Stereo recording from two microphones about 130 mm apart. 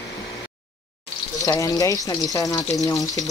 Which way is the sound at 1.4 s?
25° left (ahead or behind).